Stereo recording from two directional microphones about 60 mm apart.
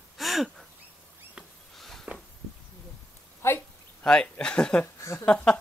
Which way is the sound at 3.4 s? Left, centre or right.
Left.